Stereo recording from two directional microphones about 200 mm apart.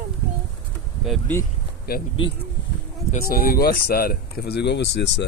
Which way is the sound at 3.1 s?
45° left (ahead or behind).